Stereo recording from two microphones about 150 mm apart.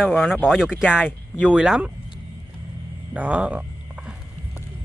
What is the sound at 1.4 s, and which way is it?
Speech, 5° right (ahead or behind).